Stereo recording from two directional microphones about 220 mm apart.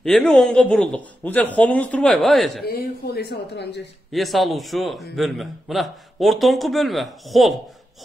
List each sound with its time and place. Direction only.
0.0 s a man's voice: 5° left (ahead or behind)
2.6 s speech: 45° left (ahead or behind)
4.1 s a man's voice: centre (ahead or behind)